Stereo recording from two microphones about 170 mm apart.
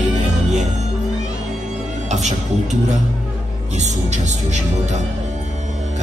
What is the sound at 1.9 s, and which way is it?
A man's voice, 45° right (ahead or behind).